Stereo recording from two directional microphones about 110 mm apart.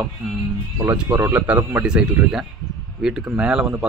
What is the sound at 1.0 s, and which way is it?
Speech, 15° right (ahead or behind).